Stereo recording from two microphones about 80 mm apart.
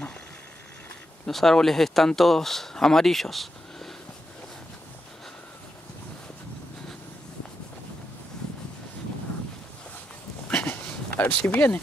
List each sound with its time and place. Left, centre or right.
1.2 s speech: centre
10.5 s a sound: centre
11.4 s speech: centre